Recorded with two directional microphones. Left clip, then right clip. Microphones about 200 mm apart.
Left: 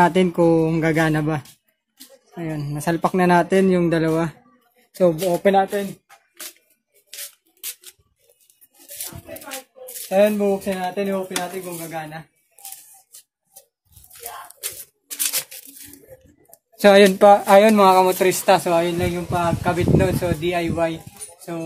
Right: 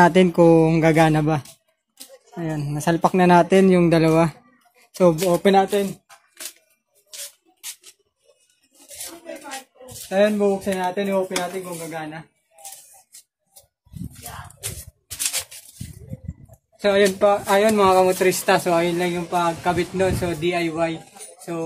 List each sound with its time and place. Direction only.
0.0 s speech: 15° right (ahead or behind)
2.3 s speech: 5° right (ahead or behind); by 5.2 s 20° right (ahead or behind)
5.3 s speech: 35° right (ahead or behind)
10.0 s speech: 25° left (ahead or behind)
10.6 s speech: 10° left (ahead or behind)
16.8 s speech: 55° left (ahead or behind)
17.6 s speech: 30° left (ahead or behind); by 20.9 s 10° left (ahead or behind)